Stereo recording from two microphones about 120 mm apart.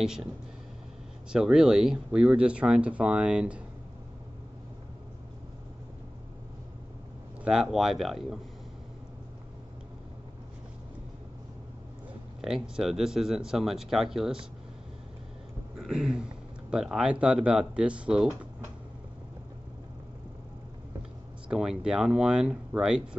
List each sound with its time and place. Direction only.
0.0 s speech: 5° right (ahead or behind)
1.3 s speech: 5° right (ahead or behind)
7.4 s speech: 5° right (ahead or behind)
12.4 s speech: 5° right (ahead or behind)
15.8 s speech: 5° right (ahead or behind)
21.5 s speech: 5° right (ahead or behind)